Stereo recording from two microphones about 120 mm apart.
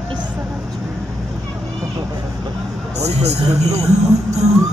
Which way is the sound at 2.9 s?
65° right (ahead or behind).